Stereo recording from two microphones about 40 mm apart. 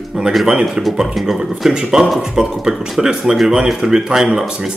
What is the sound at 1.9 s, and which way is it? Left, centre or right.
Speech, right.